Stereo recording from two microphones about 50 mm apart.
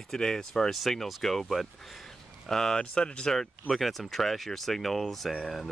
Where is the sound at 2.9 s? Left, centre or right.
Left.